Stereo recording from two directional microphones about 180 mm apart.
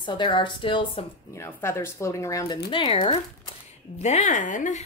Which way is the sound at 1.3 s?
15° left (ahead or behind).